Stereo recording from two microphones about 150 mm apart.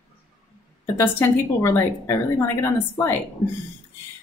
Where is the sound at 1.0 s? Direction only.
15° left (ahead or behind).